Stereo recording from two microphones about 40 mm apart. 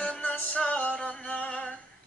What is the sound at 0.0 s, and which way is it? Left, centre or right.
Music, left.